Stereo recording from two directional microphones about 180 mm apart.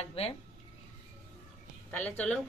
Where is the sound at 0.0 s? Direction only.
35° left (ahead or behind).